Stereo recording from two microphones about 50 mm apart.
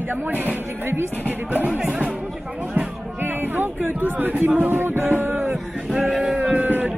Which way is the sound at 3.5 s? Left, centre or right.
Right.